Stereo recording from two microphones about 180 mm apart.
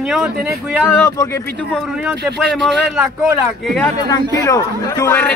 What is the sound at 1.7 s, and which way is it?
Speech, centre (ahead or behind).